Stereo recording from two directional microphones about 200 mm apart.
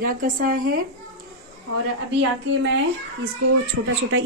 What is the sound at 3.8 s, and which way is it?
Speech, 90° right.